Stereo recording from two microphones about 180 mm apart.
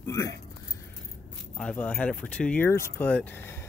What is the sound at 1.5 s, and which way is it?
Speech, 5° left (ahead or behind).